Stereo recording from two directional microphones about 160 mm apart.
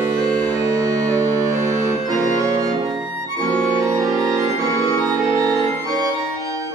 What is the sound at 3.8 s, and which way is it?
Music, 20° right (ahead or behind).